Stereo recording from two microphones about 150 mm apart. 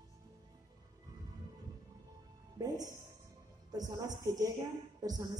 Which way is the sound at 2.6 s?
25° right (ahead or behind).